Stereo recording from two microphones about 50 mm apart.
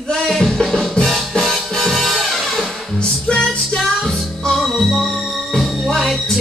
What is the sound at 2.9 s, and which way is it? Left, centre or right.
Music, centre.